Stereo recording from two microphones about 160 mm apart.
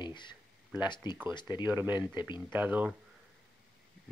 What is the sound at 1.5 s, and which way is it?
A man's voice, 15° right (ahead or behind).